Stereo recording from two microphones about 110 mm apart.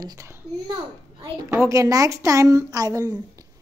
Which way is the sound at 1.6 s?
30° right (ahead or behind).